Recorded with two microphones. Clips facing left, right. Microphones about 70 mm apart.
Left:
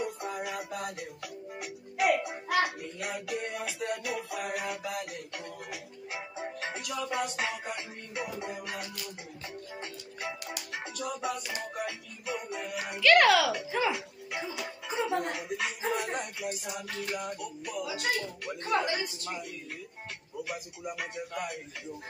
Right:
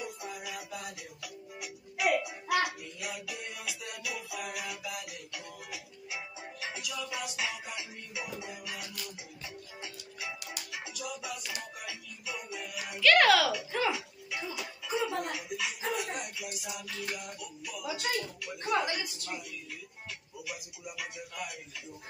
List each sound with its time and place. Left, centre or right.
0.0 s music: left
13.0 s a child's voice: centre
15.0 s speech: left